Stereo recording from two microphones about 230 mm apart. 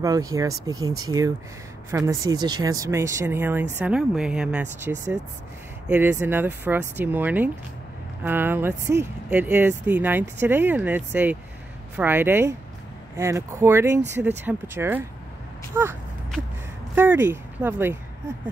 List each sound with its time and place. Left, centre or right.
0.0 s speech: centre
0.7 s speech: right
1.0 s speech: centre